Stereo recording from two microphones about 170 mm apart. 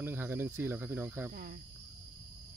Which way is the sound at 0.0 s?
15° right (ahead or behind).